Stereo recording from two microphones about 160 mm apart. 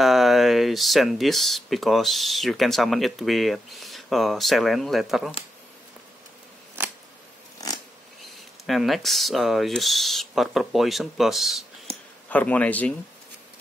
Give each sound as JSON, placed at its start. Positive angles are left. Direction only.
{"t": 0.0, "sound": "speech", "side_deg": 0}
{"t": 6.8, "sound": "scissors", "side_deg": -15}
{"t": 7.6, "sound": "a sound", "side_deg": 20}
{"t": 8.2, "sound": "speech", "side_deg": 0}
{"t": 11.9, "sound": "a sound", "side_deg": -40}
{"t": 12.3, "sound": "a man's voice", "side_deg": 10}